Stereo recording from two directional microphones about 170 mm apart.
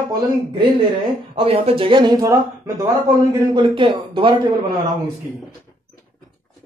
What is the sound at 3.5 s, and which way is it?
Speech, 30° right (ahead or behind).